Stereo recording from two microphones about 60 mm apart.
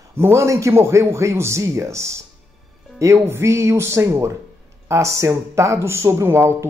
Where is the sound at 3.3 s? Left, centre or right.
Right.